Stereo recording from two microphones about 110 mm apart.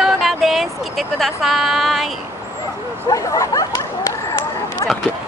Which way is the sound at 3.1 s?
30° left (ahead or behind).